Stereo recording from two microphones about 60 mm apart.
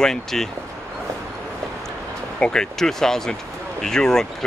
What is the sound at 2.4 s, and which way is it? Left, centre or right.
Speech, centre.